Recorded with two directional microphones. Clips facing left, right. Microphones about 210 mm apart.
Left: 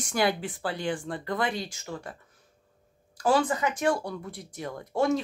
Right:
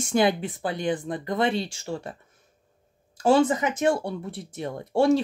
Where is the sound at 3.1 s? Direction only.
25° right (ahead or behind).